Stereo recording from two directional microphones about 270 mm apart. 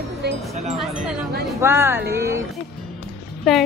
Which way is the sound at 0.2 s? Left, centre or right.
Right.